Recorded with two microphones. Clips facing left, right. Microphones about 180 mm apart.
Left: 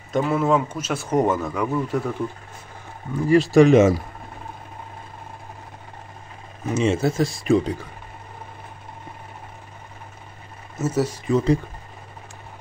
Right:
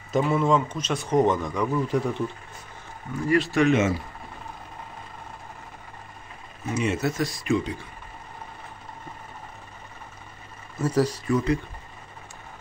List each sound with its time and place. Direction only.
0.1 s speech: centre (ahead or behind)
3.3 s speech: 35° left (ahead or behind)
6.7 s speech: 30° left (ahead or behind)
10.8 s speech: 5° left (ahead or behind)
11.2 s speech: 30° left (ahead or behind)